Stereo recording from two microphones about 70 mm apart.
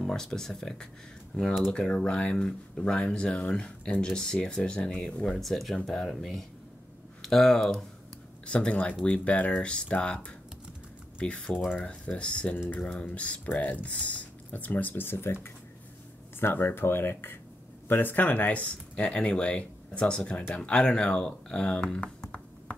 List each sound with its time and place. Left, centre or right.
0.0 s speech: centre
8.5 s speech: centre; by 15.3 s left
16.3 s speech: left; by 22.8 s centre